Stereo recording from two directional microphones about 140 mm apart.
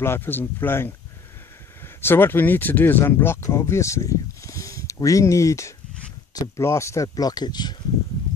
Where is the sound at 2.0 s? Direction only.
15° left (ahead or behind).